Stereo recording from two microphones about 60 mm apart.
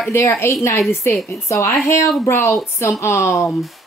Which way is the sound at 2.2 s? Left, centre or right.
Left.